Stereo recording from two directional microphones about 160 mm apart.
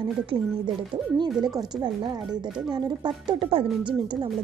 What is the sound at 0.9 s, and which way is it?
Speech, 25° right (ahead or behind).